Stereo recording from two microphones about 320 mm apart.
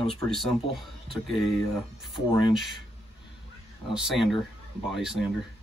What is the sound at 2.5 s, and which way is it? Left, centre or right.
Speech, centre.